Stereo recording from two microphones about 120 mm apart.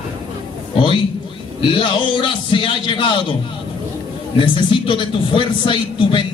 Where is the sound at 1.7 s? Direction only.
45° left (ahead or behind).